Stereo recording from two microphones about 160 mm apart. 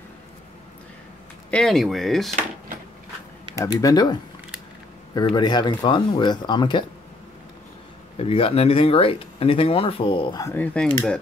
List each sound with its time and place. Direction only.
1.5 s speech: 5° left (ahead or behind)
3.5 s speech: 20° left (ahead or behind)
8.2 s speech: 35° left (ahead or behind)
10.4 s speech: 10° left (ahead or behind)